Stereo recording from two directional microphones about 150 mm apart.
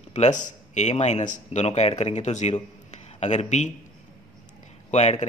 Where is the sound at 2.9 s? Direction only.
50° left (ahead or behind).